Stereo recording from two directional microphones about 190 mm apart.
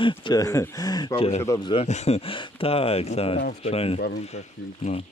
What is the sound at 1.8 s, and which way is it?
Speech, 35° left (ahead or behind).